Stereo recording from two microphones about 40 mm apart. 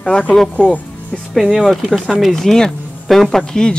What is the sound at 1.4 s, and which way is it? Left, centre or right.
Speech, centre.